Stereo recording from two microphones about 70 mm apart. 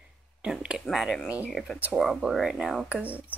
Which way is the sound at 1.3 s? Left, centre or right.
Right.